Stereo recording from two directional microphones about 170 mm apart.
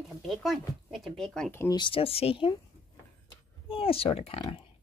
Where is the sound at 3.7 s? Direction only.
35° left (ahead or behind).